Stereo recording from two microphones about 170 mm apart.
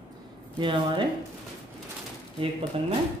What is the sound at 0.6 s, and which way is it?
Speech, 30° right (ahead or behind).